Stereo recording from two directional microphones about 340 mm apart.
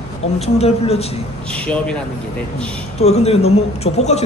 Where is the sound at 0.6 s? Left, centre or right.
Centre.